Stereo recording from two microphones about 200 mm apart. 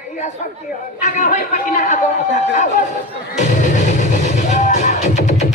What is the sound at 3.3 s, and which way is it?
Music, 35° left (ahead or behind).